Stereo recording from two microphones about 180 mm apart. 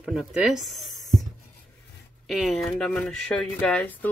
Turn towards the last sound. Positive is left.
turn(degrees=5)  # may be behind; listen again after turning